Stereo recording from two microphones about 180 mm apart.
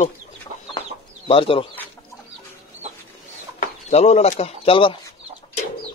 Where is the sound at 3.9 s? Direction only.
35° left (ahead or behind).